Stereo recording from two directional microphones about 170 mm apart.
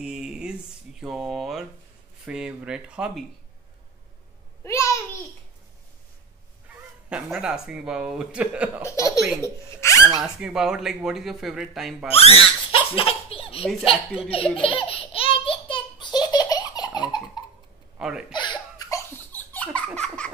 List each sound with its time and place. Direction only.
0.0 s speech: 5° right (ahead or behind)
4.6 s a sound: 15° left (ahead or behind)
6.7 s speech: 5° right (ahead or behind)
8.8 s speech: 20° left (ahead or behind)
10.2 s speech: 5° right (ahead or behind)
12.1 s baby laughter: 35° left (ahead or behind)
14.2 s speech: 35° left (ahead or behind)
14.6 s baby laughter: 30° left (ahead or behind)
17.9 s speech: 5° right (ahead or behind)
18.3 s baby laughter: 25° left (ahead or behind)
19.3 s laughter: 10° left (ahead or behind)